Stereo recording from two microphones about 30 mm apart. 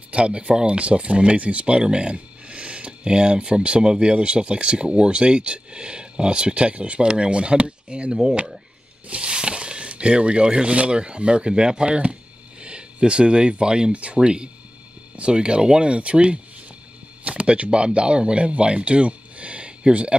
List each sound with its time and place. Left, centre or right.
0.1 s speech: right
1.8 s speech: right
8.1 s speech: right
17.2 s a sound: right
17.6 s speech: right
18.6 s a sound: right